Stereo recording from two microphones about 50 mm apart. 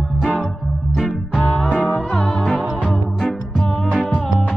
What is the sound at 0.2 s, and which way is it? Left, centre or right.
Music, left.